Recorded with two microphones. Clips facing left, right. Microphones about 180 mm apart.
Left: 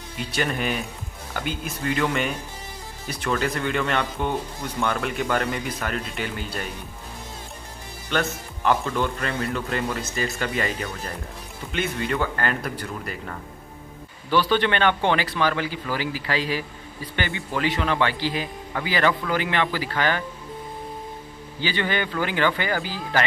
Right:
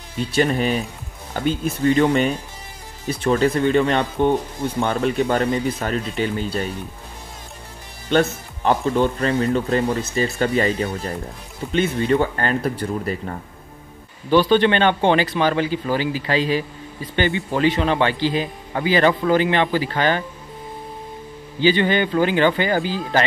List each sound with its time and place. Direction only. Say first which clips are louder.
0.3 s speech: right 7 dB; 25° right (ahead or behind)
1.9 s speech: right 8 dB; 30° right (ahead or behind)
8.1 s speech: right 7 dB; 30° right (ahead or behind)
21.5 s speech: right 8 dB; 20° right (ahead or behind)